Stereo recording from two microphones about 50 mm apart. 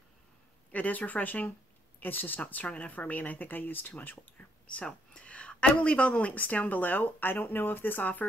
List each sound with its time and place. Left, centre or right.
0.7 s a woman's voice: left
4.6 s a woman's voice: left